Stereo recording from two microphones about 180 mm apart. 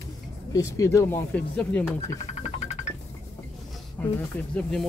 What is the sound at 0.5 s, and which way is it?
Speech, 15° left (ahead or behind).